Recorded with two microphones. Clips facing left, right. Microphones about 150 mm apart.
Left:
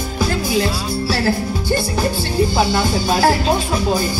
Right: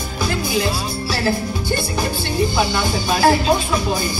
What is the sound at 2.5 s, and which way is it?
Speech, 35° left (ahead or behind).